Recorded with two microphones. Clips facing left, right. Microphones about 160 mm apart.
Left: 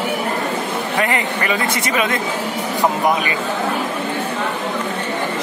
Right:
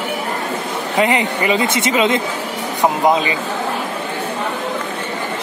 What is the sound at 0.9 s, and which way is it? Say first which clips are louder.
A woman's voice: right 5 dB; 20° right (ahead or behind).